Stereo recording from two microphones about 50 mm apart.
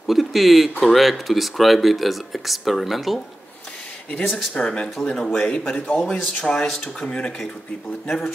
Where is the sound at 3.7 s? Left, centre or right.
Left.